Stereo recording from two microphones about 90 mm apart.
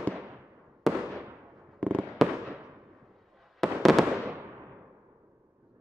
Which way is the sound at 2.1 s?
Centre (ahead or behind).